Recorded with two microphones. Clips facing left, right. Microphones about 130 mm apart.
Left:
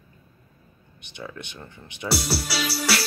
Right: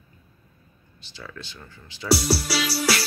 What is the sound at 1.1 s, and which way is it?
Speech, 20° left (ahead or behind).